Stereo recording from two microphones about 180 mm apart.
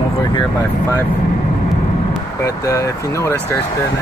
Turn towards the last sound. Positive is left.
turn(degrees=15)  # may be behind; listen again after turning